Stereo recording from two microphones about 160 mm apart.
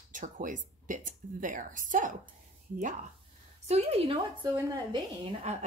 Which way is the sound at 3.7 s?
40° right (ahead or behind).